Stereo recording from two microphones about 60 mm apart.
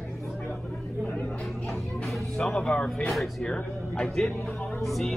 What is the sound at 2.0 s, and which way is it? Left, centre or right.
Speech, centre.